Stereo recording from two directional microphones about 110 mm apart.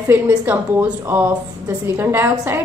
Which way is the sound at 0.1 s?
15° right (ahead or behind).